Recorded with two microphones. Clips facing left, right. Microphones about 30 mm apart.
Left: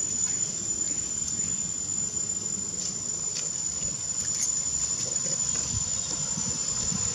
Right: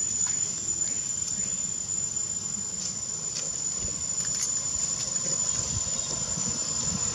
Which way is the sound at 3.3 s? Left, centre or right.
Centre.